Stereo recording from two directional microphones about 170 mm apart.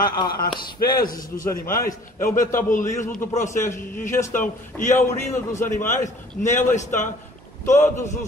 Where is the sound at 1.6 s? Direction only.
15° left (ahead or behind).